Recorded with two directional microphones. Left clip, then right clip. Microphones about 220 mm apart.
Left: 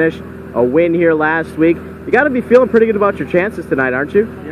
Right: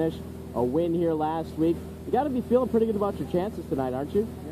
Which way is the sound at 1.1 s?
20° left (ahead or behind).